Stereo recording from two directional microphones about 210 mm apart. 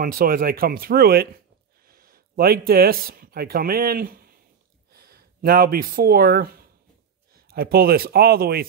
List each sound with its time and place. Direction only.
0.0 s speech: 45° right (ahead or behind)